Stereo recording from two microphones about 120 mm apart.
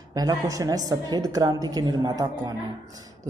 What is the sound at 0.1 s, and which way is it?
Speech, 30° right (ahead or behind).